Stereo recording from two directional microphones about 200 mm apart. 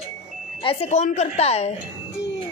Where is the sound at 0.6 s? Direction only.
30° left (ahead or behind).